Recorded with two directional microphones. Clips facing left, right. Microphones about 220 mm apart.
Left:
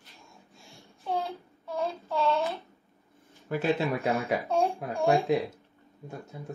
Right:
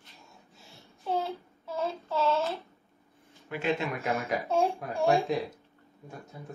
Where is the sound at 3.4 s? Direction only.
45° left (ahead or behind).